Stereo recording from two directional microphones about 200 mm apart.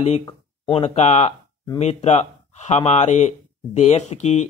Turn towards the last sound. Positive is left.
turn(degrees=35)  # may be behind; listen again after turning